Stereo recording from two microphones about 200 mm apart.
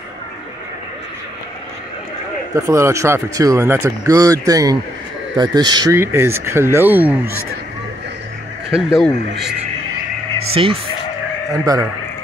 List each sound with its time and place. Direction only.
2.5 s speech: 15° right (ahead or behind)
8.6 s speech: centre (ahead or behind)
10.5 s speech: 25° right (ahead or behind)